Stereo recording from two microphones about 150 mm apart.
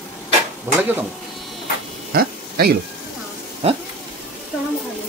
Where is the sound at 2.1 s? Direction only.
90° right.